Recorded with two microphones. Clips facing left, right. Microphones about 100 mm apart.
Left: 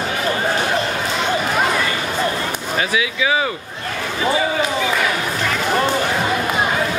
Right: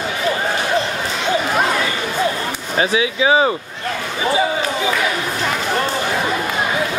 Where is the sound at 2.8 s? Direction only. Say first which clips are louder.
Right 5 dB; 30° right (ahead or behind).